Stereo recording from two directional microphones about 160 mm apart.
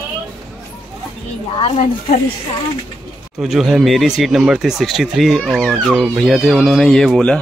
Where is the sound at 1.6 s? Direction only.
40° left (ahead or behind).